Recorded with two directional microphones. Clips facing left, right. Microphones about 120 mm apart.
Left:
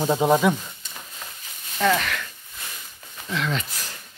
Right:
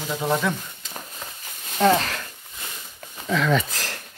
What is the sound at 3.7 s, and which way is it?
Speech, 90° right.